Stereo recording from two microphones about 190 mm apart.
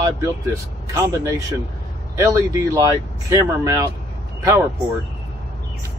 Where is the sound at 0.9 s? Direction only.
15° right (ahead or behind).